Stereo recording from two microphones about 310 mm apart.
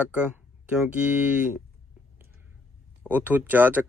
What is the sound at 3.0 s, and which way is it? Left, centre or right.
Speech, centre.